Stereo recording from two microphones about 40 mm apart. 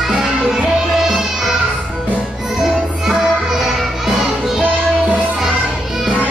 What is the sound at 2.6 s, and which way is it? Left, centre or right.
Music, centre.